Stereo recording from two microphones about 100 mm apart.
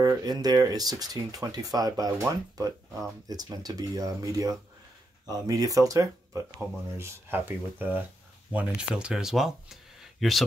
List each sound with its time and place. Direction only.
0.2 s speech: 40° right (ahead or behind)
7.0 s speech: 25° right (ahead or behind); by 10.4 s centre (ahead or behind)